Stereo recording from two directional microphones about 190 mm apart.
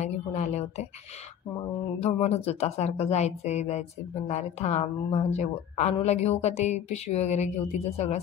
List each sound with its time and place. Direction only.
0.0 s a woman's voice: 35° left (ahead or behind)
2.0 s a woman's voice: 35° left (ahead or behind)